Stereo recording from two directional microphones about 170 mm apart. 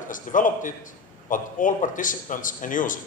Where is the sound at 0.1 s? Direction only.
50° left (ahead or behind).